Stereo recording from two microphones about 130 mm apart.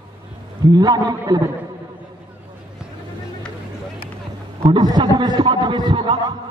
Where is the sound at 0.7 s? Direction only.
30° right (ahead or behind).